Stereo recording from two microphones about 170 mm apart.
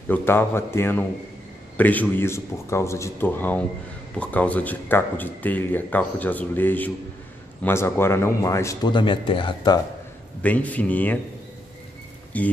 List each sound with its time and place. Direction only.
0.1 s speech: 10° left (ahead or behind); by 9.8 s 30° left (ahead or behind)
10.4 s speech: 10° left (ahead or behind)
12.3 s speech: 10° left (ahead or behind)